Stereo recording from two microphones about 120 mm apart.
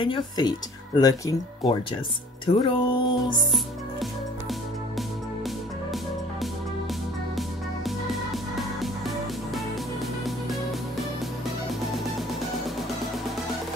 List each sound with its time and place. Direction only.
0.0 s speech: 40° left (ahead or behind)
2.4 s music: 45° left (ahead or behind)
7.3 s music: centre (ahead or behind)